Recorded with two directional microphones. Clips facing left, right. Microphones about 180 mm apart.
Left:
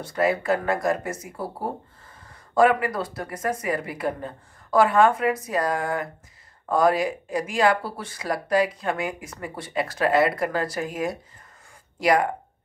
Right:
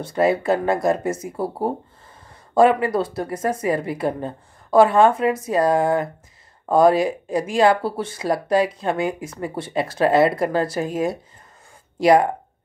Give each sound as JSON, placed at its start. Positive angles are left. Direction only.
{"t": 0.0, "sound": "speech", "side_deg": -25}